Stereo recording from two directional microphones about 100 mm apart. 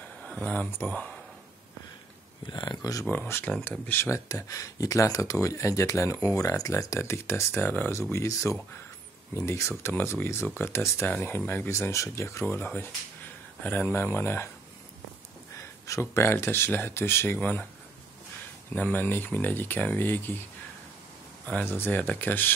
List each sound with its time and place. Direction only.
0.2 s speech: 10° left (ahead or behind)
2.4 s speech: 50° left (ahead or behind)
3.1 s speech: 25° left (ahead or behind)
4.0 s speech: 30° left (ahead or behind)
15.6 s speech: 30° left (ahead or behind)
18.7 s speech: 20° left (ahead or behind)
21.5 s speech: 20° left (ahead or behind)